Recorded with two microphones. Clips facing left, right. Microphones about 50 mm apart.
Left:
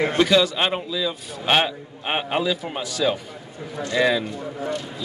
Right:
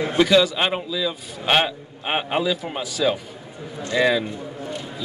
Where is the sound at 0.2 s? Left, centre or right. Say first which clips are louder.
Right 3 dB; centre.